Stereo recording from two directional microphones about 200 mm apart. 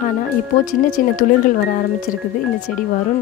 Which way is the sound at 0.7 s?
45° left (ahead or behind).